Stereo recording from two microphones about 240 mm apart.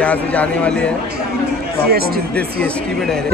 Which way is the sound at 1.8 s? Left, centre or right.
Right.